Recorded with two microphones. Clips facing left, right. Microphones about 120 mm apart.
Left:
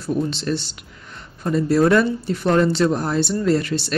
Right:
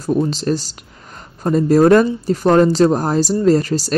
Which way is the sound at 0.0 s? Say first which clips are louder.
Right 5 dB; 35° right (ahead or behind).